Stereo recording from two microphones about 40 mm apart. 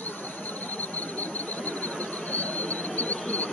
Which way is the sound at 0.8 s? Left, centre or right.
Left.